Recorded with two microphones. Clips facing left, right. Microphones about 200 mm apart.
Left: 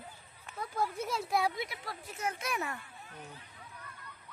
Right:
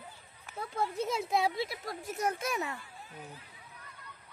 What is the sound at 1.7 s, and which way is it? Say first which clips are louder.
Speech: right 5 dB; 45° right (ahead or behind).